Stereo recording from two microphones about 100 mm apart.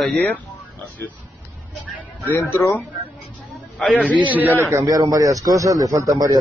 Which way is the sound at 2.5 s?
20° left (ahead or behind).